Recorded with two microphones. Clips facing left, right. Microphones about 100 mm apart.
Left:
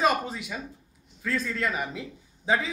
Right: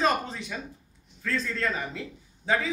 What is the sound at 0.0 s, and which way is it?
Speech, 10° left (ahead or behind).